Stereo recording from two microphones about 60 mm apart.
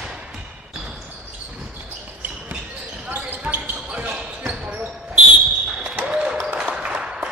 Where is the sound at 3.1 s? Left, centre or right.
Right.